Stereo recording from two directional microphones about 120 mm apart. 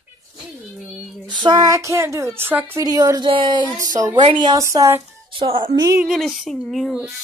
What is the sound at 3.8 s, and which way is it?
Speech, 30° right (ahead or behind).